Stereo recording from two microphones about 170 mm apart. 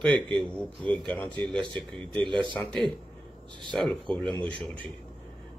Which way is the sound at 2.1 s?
30° right (ahead or behind).